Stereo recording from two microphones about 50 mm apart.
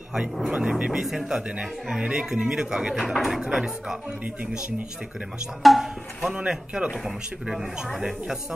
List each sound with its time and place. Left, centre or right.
0.1 s speech: centre
0.5 s speech: right
1.0 s speech: centre
3.2 s speech: centre
5.6 s speech: centre
6.2 s speech: centre
7.1 s speech: centre